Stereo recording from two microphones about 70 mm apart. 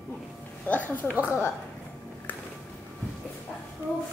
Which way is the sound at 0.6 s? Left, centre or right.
Left.